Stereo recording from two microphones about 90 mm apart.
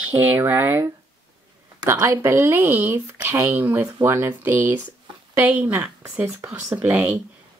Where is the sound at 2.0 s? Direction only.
30° right (ahead or behind).